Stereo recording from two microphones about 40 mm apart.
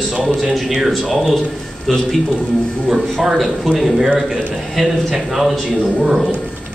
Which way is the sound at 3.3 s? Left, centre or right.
Centre.